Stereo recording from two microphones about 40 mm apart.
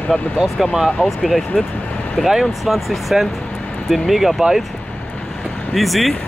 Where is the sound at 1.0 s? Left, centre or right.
Left.